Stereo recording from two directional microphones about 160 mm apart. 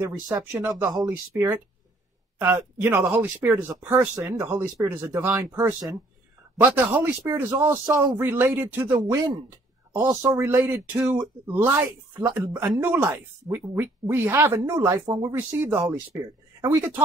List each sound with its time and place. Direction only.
0.0 s speech: 15° right (ahead or behind)